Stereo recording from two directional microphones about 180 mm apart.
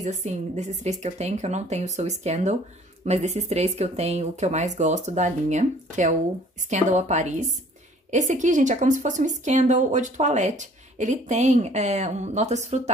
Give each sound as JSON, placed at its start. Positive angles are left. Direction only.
{"t": 0.0, "sound": "a woman's voice", "side_deg": -40}